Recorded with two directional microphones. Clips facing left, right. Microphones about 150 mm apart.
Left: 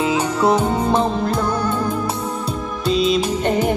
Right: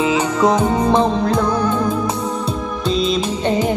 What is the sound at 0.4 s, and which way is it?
Music, 5° left (ahead or behind).